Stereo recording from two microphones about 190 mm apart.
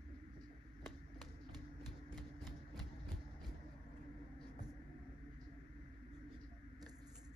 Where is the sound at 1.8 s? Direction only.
25° right (ahead or behind).